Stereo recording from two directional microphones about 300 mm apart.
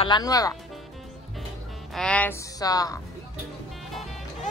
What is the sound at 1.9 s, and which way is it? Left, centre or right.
A child's voice, centre.